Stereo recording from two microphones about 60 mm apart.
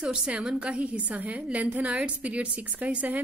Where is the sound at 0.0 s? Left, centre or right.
Centre.